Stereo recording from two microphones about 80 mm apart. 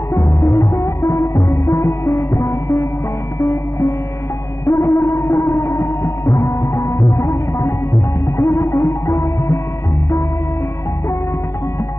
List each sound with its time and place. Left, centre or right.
0.1 s music: left